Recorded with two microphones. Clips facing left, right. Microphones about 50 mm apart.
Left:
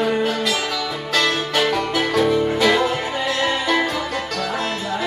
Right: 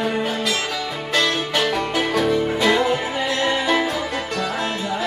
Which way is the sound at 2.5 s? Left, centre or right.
Centre.